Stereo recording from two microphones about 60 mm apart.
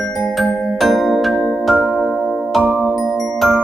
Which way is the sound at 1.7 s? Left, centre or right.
Centre.